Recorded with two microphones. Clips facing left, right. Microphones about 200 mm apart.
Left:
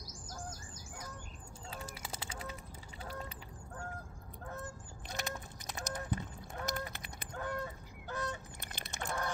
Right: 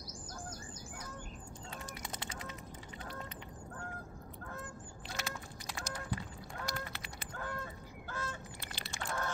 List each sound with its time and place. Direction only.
2.0 s duck: 10° left (ahead or behind)
5.2 s a sound: 20° left (ahead or behind)
6.6 s goose: 20° left (ahead or behind)
8.1 s fowl: 20° left (ahead or behind)